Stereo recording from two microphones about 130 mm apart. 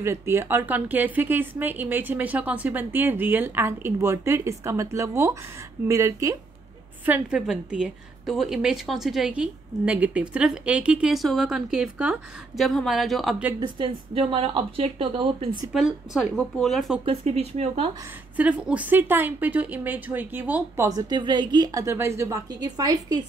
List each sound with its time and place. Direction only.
0.0 s a woman's voice: 20° right (ahead or behind)
7.1 s a woman's voice: 5° right (ahead or behind)
13.6 s speech: 40° right (ahead or behind)
15.7 s a woman's voice: 5° right (ahead or behind)
17.0 s speech: 50° right (ahead or behind)
18.3 s a woman's voice: 10° right (ahead or behind)
21.1 s a woman's voice: 35° right (ahead or behind)
21.8 s a woman's voice: 20° right (ahead or behind)